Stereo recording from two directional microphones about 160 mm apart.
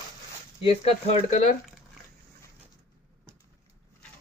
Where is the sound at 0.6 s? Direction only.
35° left (ahead or behind).